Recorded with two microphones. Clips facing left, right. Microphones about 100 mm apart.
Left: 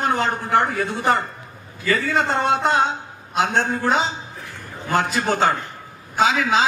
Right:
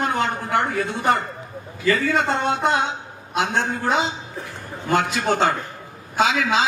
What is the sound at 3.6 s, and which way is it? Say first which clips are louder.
A man's voice: left 1 dB; 35° left (ahead or behind).